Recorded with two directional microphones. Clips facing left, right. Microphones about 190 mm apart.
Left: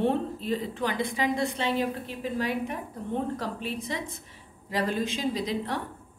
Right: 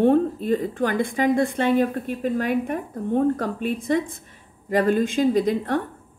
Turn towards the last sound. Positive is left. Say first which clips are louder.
# right 8 dB
turn(degrees=-50)  # may be behind; listen again after turning